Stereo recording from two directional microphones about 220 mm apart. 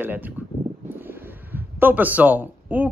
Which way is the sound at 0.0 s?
10° right (ahead or behind).